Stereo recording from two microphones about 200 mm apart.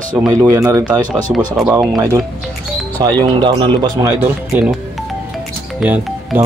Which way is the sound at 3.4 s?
25° right (ahead or behind).